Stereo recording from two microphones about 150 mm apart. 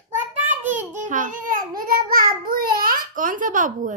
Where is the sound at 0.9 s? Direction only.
60° right (ahead or behind).